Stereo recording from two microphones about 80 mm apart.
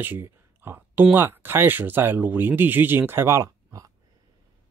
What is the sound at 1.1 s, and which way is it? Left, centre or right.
Speech, right.